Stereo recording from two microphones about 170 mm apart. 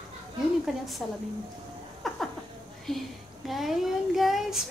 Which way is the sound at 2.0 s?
Centre (ahead or behind).